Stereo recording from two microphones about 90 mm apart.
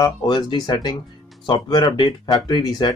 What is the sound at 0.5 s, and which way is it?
Speech, 55° left (ahead or behind).